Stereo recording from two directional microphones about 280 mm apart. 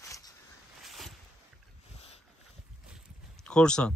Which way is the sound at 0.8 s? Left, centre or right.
Centre.